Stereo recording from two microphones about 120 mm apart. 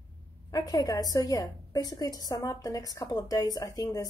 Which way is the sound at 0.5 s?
30° left (ahead or behind).